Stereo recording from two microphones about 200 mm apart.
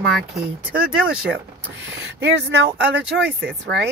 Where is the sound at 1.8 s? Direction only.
65° right (ahead or behind).